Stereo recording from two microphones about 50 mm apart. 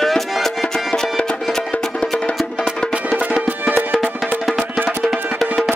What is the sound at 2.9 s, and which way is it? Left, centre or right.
Music, right.